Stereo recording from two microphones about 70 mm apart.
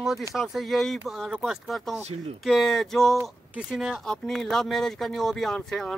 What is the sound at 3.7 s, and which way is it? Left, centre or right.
Speech, centre.